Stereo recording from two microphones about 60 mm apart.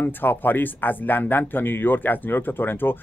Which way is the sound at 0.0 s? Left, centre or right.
Left.